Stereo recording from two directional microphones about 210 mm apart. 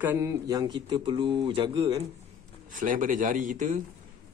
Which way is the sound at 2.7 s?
40° right (ahead or behind).